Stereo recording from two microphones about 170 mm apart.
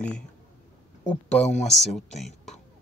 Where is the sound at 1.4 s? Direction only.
45° left (ahead or behind).